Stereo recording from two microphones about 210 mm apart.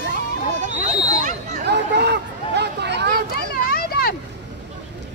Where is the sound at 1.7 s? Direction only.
55° right (ahead or behind).